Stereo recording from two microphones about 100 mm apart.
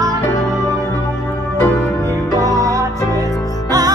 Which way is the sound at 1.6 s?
20° left (ahead or behind).